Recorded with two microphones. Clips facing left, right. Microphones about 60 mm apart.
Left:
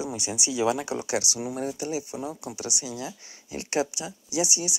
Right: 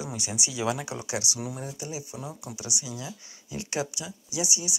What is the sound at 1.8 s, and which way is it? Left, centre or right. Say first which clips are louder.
Speech: left 6 dB; left.